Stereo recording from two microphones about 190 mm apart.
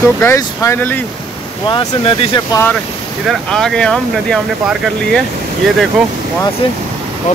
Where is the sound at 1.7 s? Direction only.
25° left (ahead or behind).